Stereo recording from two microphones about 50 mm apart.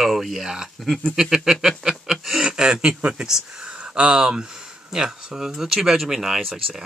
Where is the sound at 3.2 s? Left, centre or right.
Centre.